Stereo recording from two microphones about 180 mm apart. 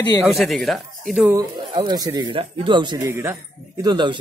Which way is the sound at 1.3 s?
20° right (ahead or behind).